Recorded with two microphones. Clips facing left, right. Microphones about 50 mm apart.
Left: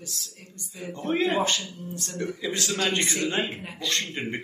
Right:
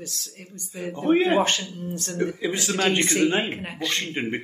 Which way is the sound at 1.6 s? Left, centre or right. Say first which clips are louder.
Right 4 dB; right.